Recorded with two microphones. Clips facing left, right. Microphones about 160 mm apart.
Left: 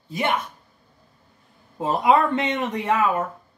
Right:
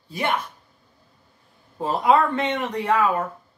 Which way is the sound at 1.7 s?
20° left (ahead or behind).